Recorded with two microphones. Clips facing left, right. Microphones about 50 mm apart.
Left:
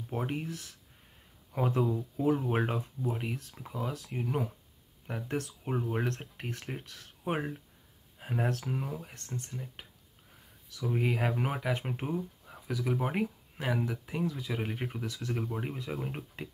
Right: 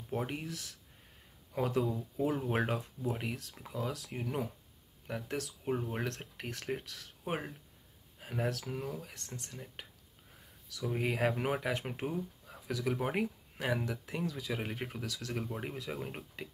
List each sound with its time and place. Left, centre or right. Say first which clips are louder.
0.1 s speech: left 2 dB; centre
0.5 s speech: left 2 dB; centre
1.8 s speech: left 2 dB; centre
8.2 s a sound: left 3 dB; centre
8.6 s speech: left 3 dB; centre